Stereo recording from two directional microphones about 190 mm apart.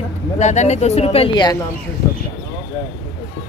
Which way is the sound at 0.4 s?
35° left (ahead or behind).